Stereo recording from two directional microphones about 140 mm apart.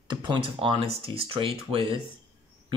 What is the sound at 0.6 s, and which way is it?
Speech, 45° right (ahead or behind).